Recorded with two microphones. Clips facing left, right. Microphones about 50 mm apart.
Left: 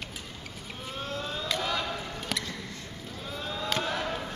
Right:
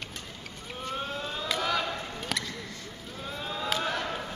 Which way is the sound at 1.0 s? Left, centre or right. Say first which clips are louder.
Left 4 dB; centre.